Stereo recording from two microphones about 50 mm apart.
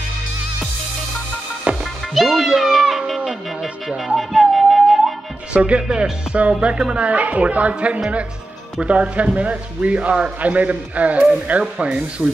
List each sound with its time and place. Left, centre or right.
2.1 s music: centre
2.4 s music: centre
3.2 s music: centre
4.2 s music: centre
5.5 s a man's voice: right
12.2 s speech: centre